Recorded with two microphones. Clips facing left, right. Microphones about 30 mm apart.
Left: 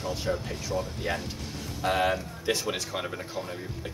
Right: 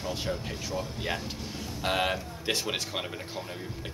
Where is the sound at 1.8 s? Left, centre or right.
Right.